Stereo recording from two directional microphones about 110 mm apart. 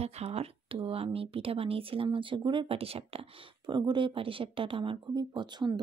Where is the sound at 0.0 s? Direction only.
65° right (ahead or behind).